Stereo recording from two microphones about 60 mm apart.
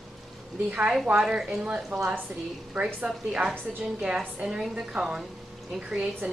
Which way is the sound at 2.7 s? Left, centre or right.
Right.